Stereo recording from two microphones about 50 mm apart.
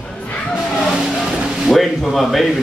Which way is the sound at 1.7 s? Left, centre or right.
Centre.